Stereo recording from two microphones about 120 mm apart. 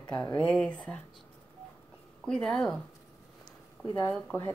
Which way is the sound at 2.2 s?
5° left (ahead or behind).